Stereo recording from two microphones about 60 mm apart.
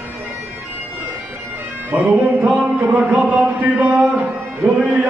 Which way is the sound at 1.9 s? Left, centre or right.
Right.